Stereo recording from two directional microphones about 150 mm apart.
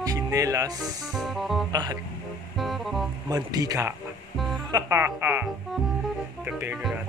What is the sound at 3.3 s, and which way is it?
Speech, 25° right (ahead or behind).